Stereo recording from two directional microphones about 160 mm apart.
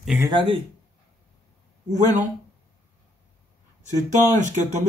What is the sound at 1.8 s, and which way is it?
Speech, 50° right (ahead or behind).